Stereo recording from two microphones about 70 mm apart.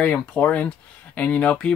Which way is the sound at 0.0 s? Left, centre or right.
Left.